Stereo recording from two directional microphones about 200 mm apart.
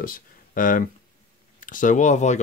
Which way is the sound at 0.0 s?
45° left (ahead or behind).